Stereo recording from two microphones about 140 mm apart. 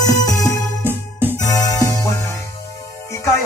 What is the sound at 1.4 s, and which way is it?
Music, 25° left (ahead or behind).